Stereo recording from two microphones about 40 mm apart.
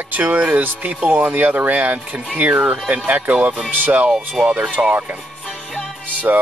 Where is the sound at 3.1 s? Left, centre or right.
Right.